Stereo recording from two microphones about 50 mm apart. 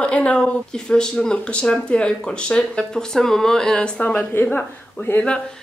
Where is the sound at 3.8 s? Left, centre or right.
Left.